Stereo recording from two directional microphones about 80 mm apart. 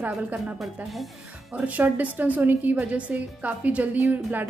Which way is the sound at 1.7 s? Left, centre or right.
Centre.